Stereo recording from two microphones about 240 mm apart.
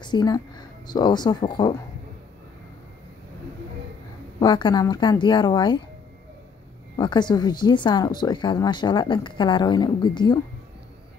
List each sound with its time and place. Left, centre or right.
0.0 s speech: centre
4.4 s speech: centre
7.0 s speech: centre